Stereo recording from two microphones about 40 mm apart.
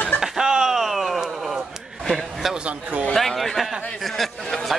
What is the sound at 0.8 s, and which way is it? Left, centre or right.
A man's voice, centre.